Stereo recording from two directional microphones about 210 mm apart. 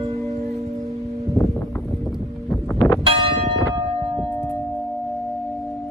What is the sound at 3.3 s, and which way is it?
Church bell, 25° right (ahead or behind).